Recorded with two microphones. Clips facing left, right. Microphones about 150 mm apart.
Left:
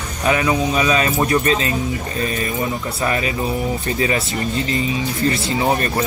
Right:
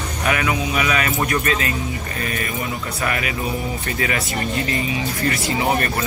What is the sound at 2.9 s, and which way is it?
Speech, 30° left (ahead or behind).